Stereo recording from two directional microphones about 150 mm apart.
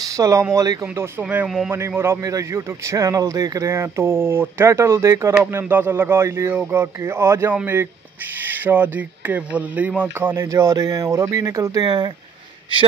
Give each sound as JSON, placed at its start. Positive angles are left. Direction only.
{"t": 0.0, "sound": "a man's voice", "side_deg": -20}